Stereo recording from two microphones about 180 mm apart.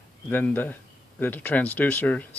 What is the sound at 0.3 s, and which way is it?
Speech, 10° left (ahead or behind).